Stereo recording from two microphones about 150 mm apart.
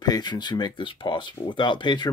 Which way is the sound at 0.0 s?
30° left (ahead or behind).